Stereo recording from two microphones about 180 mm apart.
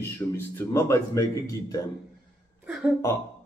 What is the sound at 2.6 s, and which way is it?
Speech, centre (ahead or behind).